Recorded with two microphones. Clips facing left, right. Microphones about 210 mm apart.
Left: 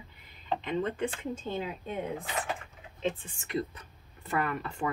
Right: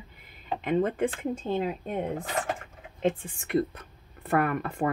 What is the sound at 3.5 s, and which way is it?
Speech, 55° right (ahead or behind).